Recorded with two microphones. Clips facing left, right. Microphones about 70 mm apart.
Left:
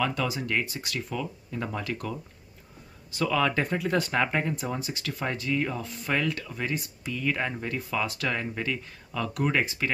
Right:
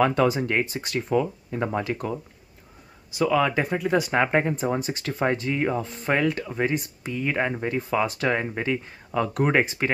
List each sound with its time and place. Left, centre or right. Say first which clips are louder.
0.0 s speech: right 8 dB; right; by 3.9 s centre
3.9 s speech: right 6 dB; right